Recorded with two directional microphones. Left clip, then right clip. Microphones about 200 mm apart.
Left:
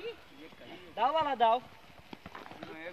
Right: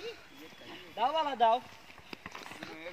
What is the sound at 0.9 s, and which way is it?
Speech, 35° right (ahead or behind).